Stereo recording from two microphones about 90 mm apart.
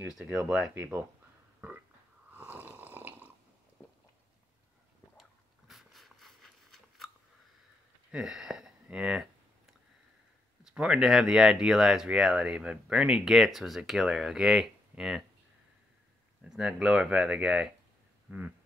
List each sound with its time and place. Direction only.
0.2 s speech: 20° right (ahead or behind)
2.3 s snoring: 20° right (ahead or behind)
5.7 s a sound: centre (ahead or behind)
8.1 s a sound: 10° right (ahead or behind)
8.8 s speech: 10° right (ahead or behind)
10.6 s speech: 10° right (ahead or behind)
16.4 s speech: 10° right (ahead or behind)